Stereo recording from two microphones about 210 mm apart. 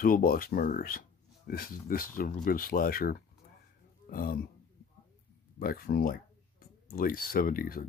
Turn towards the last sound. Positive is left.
turn(degrees=45)  # may be behind; listen again after turning